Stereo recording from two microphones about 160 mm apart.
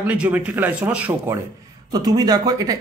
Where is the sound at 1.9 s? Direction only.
25° right (ahead or behind).